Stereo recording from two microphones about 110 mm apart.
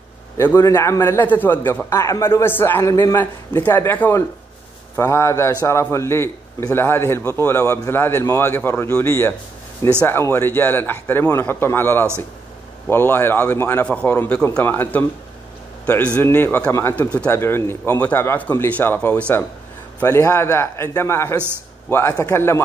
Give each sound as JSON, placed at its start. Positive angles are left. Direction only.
{"t": 0.6, "sound": "a man's voice", "side_deg": 30}
{"t": 16.2, "sound": "a man's voice", "side_deg": 20}
{"t": 20.0, "sound": "a man's voice", "side_deg": 25}